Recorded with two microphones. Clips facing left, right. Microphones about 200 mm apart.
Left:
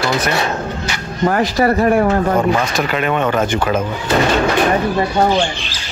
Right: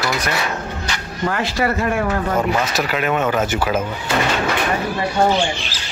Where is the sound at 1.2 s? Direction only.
40° left (ahead or behind).